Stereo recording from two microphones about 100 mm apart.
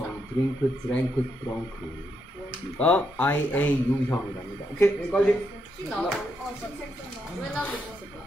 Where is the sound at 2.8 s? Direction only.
15° left (ahead or behind).